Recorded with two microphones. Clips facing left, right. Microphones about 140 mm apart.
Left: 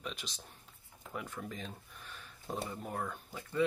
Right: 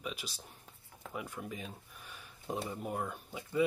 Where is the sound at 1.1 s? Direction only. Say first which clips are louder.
Even; 10° right (ahead or behind).